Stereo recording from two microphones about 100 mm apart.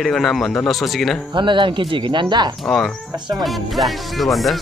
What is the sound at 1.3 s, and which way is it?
Speech, 55° right (ahead or behind).